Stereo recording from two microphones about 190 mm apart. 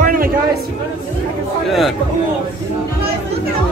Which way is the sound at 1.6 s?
Centre (ahead or behind).